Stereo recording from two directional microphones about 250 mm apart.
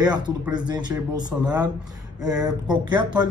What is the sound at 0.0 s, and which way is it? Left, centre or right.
Speech, centre.